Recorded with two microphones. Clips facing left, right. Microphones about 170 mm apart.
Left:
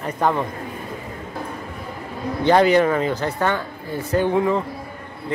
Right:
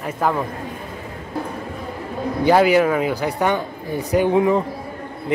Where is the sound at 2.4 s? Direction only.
5° right (ahead or behind).